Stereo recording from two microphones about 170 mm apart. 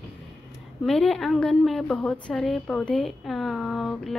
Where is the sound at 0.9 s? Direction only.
5° left (ahead or behind).